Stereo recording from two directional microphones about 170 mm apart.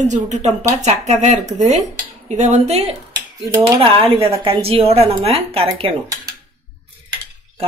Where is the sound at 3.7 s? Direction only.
30° right (ahead or behind).